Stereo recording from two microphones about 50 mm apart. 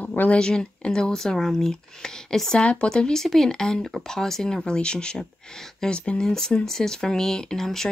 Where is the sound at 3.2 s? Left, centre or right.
Centre.